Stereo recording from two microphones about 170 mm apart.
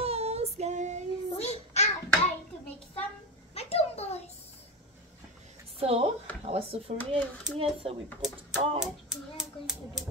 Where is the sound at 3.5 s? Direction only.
40° left (ahead or behind).